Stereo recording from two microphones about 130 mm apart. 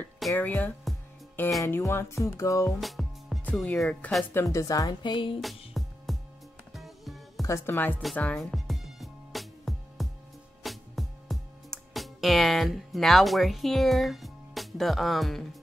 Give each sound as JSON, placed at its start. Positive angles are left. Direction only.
{"t": 0.4, "sound": "speech", "side_deg": 15}
{"t": 1.6, "sound": "music", "side_deg": 20}
{"t": 2.8, "sound": "music", "side_deg": 0}
{"t": 3.5, "sound": "speech", "side_deg": 0}
{"t": 4.3, "sound": "music", "side_deg": 20}
{"t": 5.8, "sound": "music", "side_deg": 0}
{"t": 7.4, "sound": "speech", "side_deg": 20}
{"t": 8.2, "sound": "music", "side_deg": 10}